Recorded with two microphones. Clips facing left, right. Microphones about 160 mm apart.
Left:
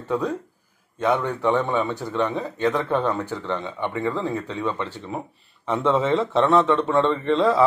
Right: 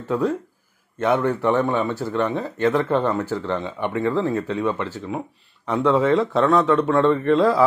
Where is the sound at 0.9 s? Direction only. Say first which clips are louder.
Right 2 dB; 5° right (ahead or behind).